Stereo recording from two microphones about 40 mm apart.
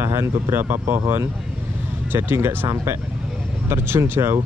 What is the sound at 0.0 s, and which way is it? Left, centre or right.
Speech, right.